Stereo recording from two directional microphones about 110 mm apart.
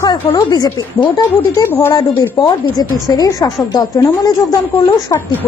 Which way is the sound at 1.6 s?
20° left (ahead or behind).